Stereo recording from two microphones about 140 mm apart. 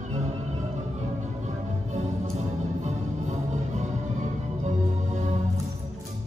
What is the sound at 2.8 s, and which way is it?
Music, 55° right (ahead or behind).